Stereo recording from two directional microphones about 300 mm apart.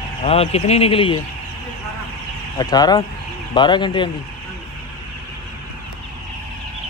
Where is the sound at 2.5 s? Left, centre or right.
Centre.